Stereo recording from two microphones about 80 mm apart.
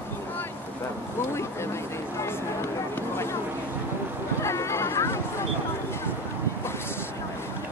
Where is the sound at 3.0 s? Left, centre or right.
Left.